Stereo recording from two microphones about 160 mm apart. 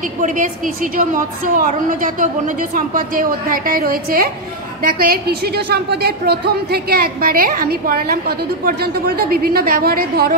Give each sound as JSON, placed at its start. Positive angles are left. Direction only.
{"t": 0.2, "sound": "a woman's voice", "side_deg": -55}